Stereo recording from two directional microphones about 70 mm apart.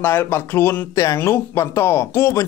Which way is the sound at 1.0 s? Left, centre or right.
Left.